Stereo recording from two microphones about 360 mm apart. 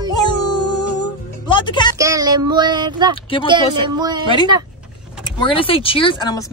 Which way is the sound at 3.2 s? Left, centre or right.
Centre.